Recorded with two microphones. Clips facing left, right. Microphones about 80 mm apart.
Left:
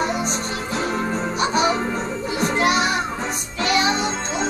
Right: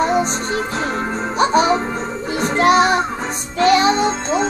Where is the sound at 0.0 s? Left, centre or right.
Right.